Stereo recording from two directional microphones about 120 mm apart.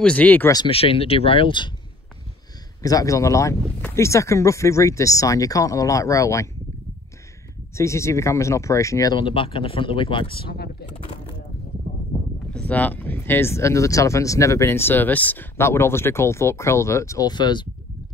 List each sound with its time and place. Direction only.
0.0 s speech: 10° left (ahead or behind)
0.7 s speech: 50° left (ahead or behind)
2.8 s speech: 30° left (ahead or behind)
7.7 s speech: 25° left (ahead or behind)
9.2 s speech: 45° left (ahead or behind)
12.1 s a sound: 35° right (ahead or behind)
12.5 s speech: 10° left (ahead or behind); by 17.6 s 40° left (ahead or behind)